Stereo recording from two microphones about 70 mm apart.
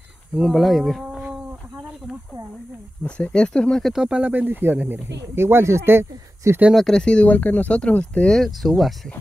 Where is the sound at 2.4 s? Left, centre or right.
Right.